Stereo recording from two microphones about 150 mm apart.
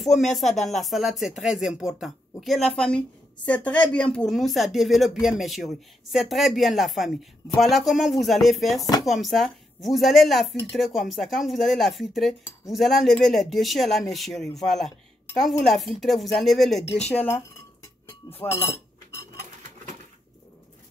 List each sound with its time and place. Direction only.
0.0 s speech: centre (ahead or behind)
17.1 s speech: 15° left (ahead or behind)